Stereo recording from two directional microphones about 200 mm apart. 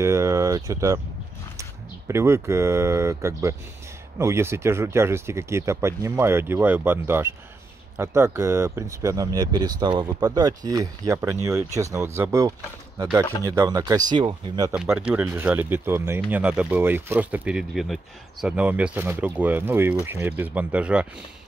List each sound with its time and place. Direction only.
0.0 s speech: 15° right (ahead or behind)
14.7 s speech: 5° right (ahead or behind)